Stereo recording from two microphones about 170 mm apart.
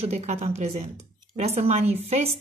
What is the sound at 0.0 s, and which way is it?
Speech, 40° right (ahead or behind).